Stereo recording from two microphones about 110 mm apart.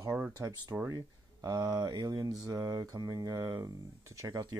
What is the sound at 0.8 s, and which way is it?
Speech, 35° right (ahead or behind).